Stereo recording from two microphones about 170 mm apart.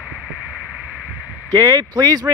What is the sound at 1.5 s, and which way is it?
Speech, 20° right (ahead or behind).